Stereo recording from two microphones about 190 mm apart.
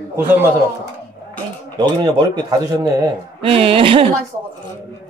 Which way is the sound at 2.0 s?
20° right (ahead or behind).